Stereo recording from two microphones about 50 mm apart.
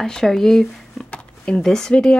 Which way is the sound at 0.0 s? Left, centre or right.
Centre.